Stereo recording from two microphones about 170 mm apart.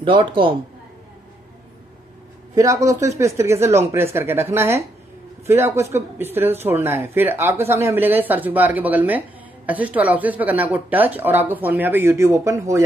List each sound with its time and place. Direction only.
0.0 s a man's voice: 30° right (ahead or behind)
2.5 s speech: 20° right (ahead or behind)